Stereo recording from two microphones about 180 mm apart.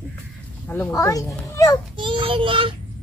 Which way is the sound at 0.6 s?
10° left (ahead or behind).